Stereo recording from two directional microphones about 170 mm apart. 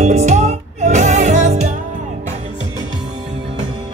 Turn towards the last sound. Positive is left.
turn(degrees=-45)  # may be behind; listen again after turning